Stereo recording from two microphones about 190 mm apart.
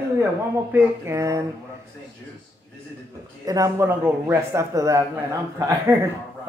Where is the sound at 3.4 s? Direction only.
15° right (ahead or behind).